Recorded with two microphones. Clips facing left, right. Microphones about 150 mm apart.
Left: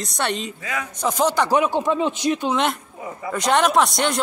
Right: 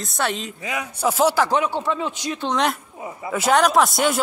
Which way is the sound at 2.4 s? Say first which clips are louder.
Even; centre (ahead or behind).